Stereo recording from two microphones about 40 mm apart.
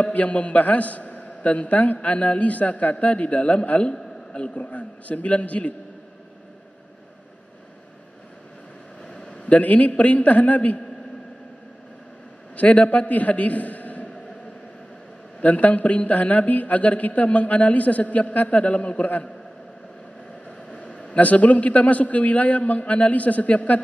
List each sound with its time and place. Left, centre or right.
0.0 s a man's voice: left
3.9 s a sound: left
4.6 s a man's voice: left
9.3 s a man's voice: left
12.5 s a man's voice: left
15.4 s a man's voice: left
20.7 s a man's voice: left